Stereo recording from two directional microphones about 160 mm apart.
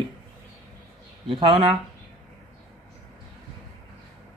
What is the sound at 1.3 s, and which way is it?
Speech, 30° right (ahead or behind).